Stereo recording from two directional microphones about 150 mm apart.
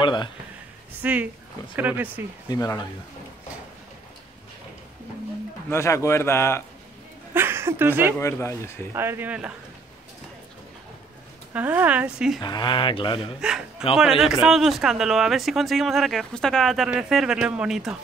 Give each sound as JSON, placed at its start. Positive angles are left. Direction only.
{"t": 0.0, "sound": "a man's voice", "side_deg": 30}
{"t": 1.0, "sound": "speech", "side_deg": -10}
{"t": 2.4, "sound": "speech", "side_deg": 25}
{"t": 5.7, "sound": "a man's voice", "side_deg": 20}
{"t": 7.3, "sound": "speech", "side_deg": -15}
{"t": 8.2, "sound": "speech", "side_deg": 20}
{"t": 8.9, "sound": "speech", "side_deg": -15}
{"t": 11.5, "sound": "speech", "side_deg": -10}
{"t": 12.4, "sound": "speech", "side_deg": 30}
{"t": 13.4, "sound": "speech", "side_deg": -5}